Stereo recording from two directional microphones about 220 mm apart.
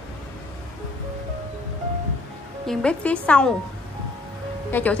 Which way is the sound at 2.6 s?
5° left (ahead or behind).